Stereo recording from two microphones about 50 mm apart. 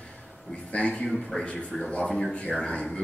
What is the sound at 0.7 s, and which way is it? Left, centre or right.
Speech, left.